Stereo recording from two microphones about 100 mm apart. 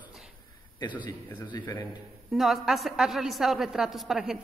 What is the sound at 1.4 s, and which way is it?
Speech, 45° left (ahead or behind).